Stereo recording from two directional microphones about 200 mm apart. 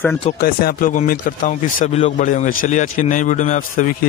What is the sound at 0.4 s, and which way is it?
Speech, 50° left (ahead or behind).